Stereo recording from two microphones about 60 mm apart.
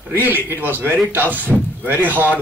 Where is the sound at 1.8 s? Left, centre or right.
Right.